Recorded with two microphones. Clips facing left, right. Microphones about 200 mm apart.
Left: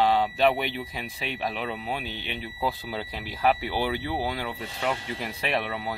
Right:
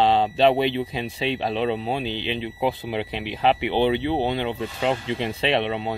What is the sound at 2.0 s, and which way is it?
Speech, 90° right.